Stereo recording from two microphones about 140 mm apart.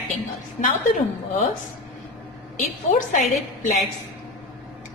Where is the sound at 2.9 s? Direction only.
65° left (ahead or behind).